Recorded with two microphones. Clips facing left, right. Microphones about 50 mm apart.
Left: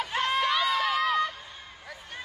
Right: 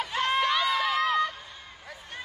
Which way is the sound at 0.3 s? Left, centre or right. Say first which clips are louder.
Right 1 dB; centre.